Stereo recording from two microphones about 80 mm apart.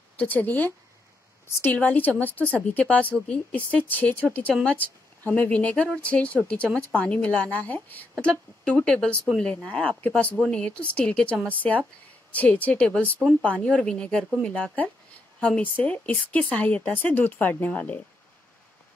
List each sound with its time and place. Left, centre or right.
0.2 s speech: left